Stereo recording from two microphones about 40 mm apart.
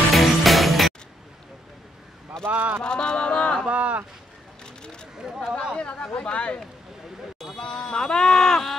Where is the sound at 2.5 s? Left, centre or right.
Right.